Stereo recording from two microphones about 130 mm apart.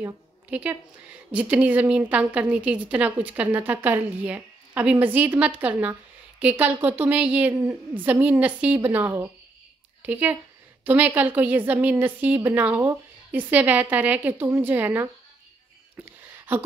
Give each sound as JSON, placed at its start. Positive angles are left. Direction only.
{"t": 0.0, "sound": "a woman's voice", "side_deg": -10}